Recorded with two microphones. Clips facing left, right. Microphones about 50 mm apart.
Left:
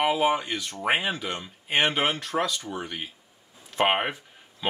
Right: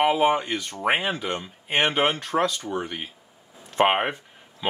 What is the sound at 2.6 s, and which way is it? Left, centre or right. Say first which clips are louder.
Speech: right 4 dB; centre.